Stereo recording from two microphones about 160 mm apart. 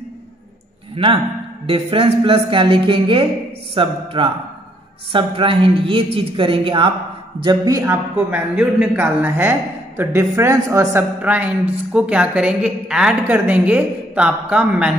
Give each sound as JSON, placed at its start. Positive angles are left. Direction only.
{"t": 0.9, "sound": "music", "side_deg": -35}
{"t": 7.3, "sound": "a man's voice", "side_deg": -25}